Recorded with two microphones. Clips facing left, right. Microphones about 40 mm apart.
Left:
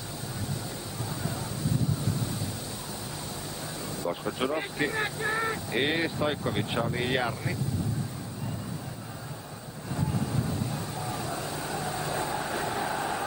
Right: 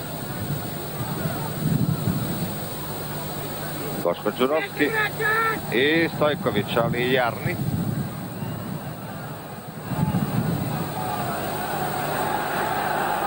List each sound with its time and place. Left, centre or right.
1.2 s wind noise: right
3.9 s speech: right
9.9 s vehicle: right